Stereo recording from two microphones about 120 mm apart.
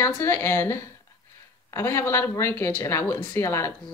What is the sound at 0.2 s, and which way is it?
Speech, 20° left (ahead or behind).